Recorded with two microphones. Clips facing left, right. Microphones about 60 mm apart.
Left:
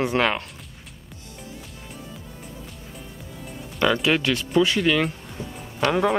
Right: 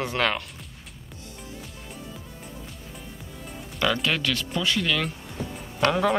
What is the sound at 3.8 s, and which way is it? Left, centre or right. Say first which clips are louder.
Speech: left 4 dB; centre.